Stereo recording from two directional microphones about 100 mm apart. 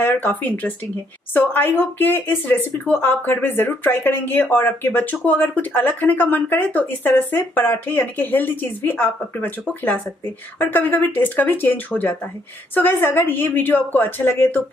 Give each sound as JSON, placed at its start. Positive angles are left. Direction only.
{"t": 0.0, "sound": "speech", "side_deg": 20}